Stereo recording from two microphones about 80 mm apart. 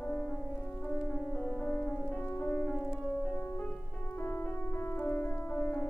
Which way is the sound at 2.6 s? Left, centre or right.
Centre.